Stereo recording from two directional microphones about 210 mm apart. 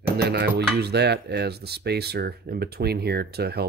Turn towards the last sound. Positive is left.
turn(degrees=-50)  # may be behind; listen again after turning